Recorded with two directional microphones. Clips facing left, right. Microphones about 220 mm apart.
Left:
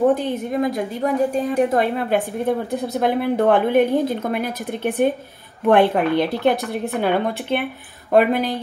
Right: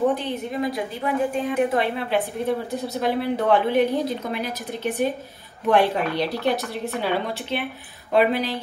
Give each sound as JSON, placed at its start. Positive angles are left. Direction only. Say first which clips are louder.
{"t": 0.1, "sound": "a woman's voice", "louder": "left 5 dB", "side_deg": 50}